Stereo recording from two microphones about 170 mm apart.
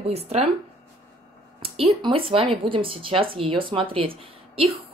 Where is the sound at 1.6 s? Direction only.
35° right (ahead or behind).